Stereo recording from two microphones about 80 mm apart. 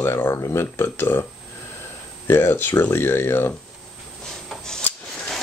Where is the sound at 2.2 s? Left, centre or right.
Left.